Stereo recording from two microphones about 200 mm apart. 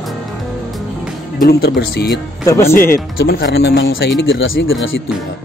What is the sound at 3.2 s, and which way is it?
Speech, 55° left (ahead or behind).